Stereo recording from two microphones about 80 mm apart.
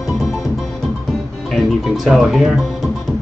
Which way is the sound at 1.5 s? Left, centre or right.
Centre.